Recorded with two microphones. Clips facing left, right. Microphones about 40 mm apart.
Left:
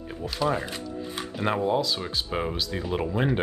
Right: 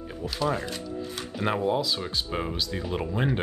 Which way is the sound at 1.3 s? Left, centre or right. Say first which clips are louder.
Left 1 dB; centre.